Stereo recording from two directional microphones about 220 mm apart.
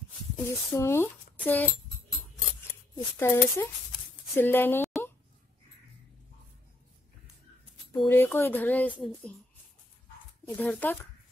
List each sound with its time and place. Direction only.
0.5 s speech: 10° left (ahead or behind)
3.2 s speech: 10° left (ahead or behind)
8.0 s a woman's voice: 10° left (ahead or behind)
10.4 s speech: 5° left (ahead or behind)